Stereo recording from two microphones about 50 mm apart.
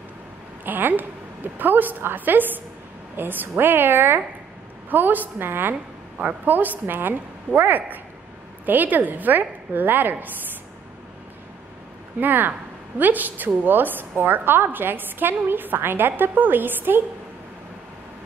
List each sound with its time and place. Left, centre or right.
0.7 s a woman's voice: right
12.2 s a woman's voice: right